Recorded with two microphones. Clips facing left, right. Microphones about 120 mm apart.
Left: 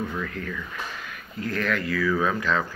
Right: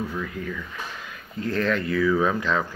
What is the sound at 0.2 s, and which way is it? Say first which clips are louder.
Speech: right 1 dB; 20° right (ahead or behind).